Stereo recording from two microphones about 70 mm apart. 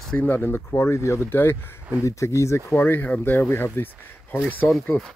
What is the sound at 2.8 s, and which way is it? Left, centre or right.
Speech, left.